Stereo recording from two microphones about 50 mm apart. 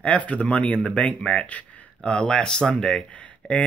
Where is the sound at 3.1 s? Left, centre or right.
Left.